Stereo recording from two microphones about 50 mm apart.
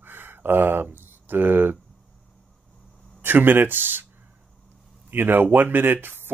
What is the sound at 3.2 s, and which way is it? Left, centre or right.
Speech, right.